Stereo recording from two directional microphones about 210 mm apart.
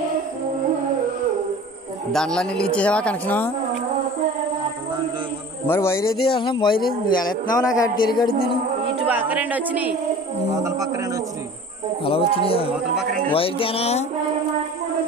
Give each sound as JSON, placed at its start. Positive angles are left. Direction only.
{"t": 2.1, "sound": "speech", "side_deg": 5}
{"t": 5.7, "sound": "a man's voice", "side_deg": 10}
{"t": 6.3, "sound": "a man's voice", "side_deg": 20}
{"t": 9.0, "sound": "speech", "side_deg": -10}
{"t": 12.0, "sound": "speech", "side_deg": 25}
{"t": 12.7, "sound": "speech", "side_deg": 0}
{"t": 13.3, "sound": "speech", "side_deg": 25}